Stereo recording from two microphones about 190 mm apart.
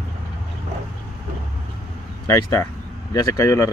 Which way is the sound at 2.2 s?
15° left (ahead or behind).